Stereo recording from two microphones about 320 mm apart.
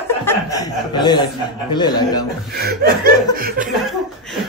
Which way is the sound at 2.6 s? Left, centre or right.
Right.